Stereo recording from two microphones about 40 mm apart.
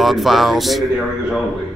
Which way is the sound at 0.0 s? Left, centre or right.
Centre.